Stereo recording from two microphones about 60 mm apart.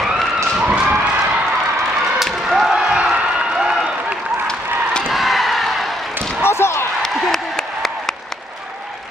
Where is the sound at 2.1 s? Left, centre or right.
Centre.